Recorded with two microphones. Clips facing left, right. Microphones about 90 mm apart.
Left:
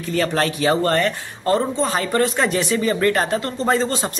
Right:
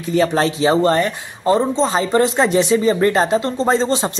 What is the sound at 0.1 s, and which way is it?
Speech, 20° right (ahead or behind).